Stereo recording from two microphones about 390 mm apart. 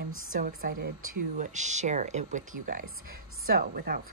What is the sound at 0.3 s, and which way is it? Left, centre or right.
A woman's voice, right.